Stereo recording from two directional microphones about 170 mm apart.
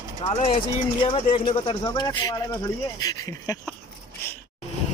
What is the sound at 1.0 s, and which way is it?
Speech, 30° left (ahead or behind).